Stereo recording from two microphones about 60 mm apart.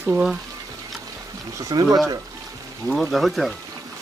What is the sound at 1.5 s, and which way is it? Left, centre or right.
Speech, right.